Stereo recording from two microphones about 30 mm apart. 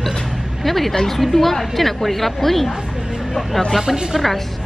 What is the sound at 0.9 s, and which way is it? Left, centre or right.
Speech, centre.